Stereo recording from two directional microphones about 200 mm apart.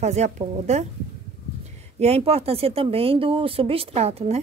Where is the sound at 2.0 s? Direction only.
30° right (ahead or behind).